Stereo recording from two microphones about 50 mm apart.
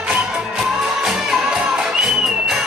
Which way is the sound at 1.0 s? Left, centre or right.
Centre.